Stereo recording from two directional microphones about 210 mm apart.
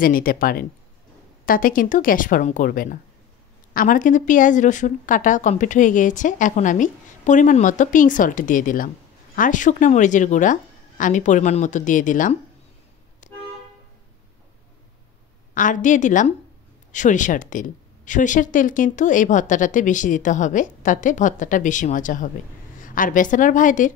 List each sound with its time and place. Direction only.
0.0 s a woman's voice: 40° left (ahead or behind)
13.2 s toot: 40° left (ahead or behind)
15.5 s a woman's voice: 40° left (ahead or behind)